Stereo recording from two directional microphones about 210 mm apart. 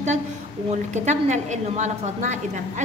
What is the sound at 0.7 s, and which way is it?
A woman's voice, 35° right (ahead or behind).